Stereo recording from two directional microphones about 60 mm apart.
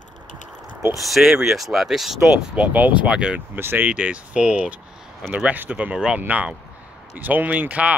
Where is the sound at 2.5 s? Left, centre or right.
Right.